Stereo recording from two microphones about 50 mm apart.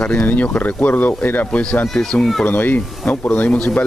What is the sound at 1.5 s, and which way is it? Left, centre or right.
Speech, left.